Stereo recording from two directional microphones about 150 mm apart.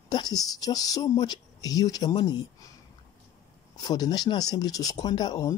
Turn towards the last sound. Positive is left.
turn(degrees=25)  # may be behind; listen again after turning